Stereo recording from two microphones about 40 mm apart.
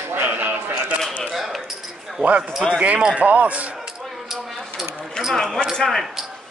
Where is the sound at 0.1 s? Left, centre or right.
Right.